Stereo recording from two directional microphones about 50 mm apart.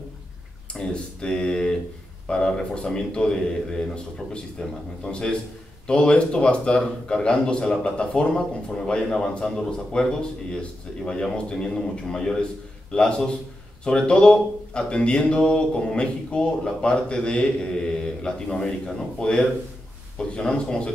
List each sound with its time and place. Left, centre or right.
0.7 s speech: centre
11.1 s speech: centre